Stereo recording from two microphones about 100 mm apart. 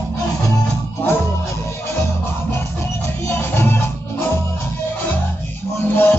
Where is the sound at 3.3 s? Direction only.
20° left (ahead or behind).